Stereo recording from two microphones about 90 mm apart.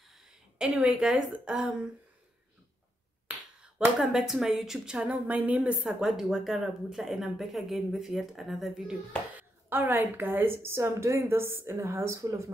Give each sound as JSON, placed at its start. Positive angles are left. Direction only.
{"t": 0.1, "sound": "a woman's voice", "side_deg": -10}
{"t": 3.3, "sound": "finger snapping", "side_deg": -10}
{"t": 4.0, "sound": "a woman's voice", "side_deg": -5}
{"t": 9.4, "sound": "a woman's voice", "side_deg": -25}